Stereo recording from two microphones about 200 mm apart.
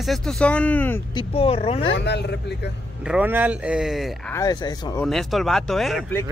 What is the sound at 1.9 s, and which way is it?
Speech, 60° left (ahead or behind).